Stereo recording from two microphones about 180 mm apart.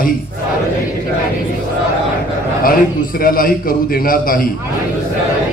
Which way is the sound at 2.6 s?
50° left (ahead or behind).